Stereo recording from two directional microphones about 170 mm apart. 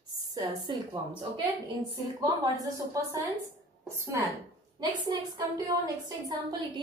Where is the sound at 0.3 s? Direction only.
20° right (ahead or behind).